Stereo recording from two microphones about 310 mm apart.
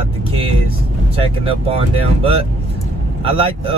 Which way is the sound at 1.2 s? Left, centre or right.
Centre.